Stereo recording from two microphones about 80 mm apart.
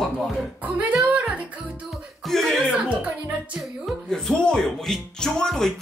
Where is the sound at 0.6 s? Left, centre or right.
Centre.